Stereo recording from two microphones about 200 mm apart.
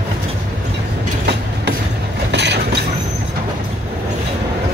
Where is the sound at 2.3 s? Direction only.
60° right (ahead or behind).